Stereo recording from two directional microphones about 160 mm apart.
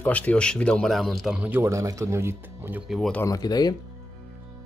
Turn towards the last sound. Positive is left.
turn(degrees=25)  # may be behind; listen again after turning